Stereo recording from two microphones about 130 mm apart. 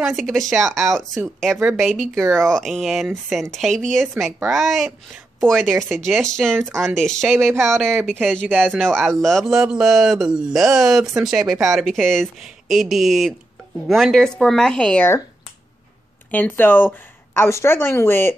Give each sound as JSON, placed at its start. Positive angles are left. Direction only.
{"t": 0.0, "sound": "speech", "side_deg": 0}
{"t": 16.3, "sound": "a woman's voice", "side_deg": 15}